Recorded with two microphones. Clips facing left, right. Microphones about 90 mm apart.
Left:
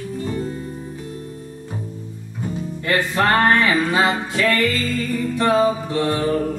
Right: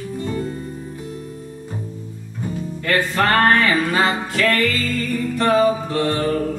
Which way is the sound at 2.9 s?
20° left (ahead or behind).